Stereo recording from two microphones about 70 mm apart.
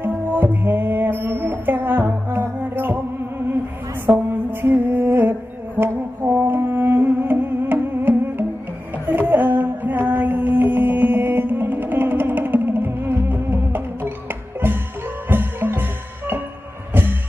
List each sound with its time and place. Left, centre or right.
0.0 s music: right
4.3 s music: right
15.2 s music: right